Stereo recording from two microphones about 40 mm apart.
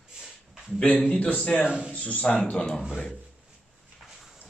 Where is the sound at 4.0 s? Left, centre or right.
Centre.